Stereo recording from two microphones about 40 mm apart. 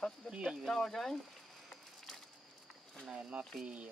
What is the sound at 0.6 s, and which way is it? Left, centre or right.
Speech, centre.